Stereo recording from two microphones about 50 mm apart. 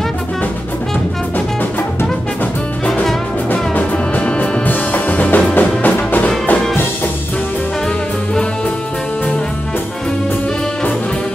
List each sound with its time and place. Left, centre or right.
3.7 s music: left